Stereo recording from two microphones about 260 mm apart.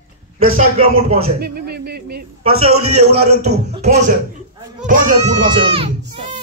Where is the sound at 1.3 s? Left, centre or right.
Right.